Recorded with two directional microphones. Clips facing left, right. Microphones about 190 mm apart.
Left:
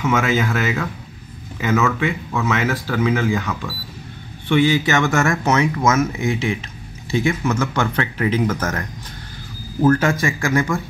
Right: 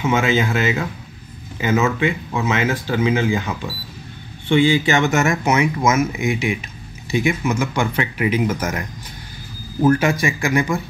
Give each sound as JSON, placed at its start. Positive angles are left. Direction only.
{"t": 0.0, "sound": "speech", "side_deg": -30}